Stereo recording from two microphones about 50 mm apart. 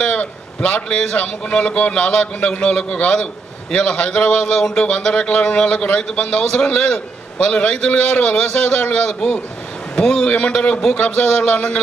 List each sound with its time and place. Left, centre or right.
0.0 s a sound: left
1.1 s a man's voice: left
9.9 s a man's voice: centre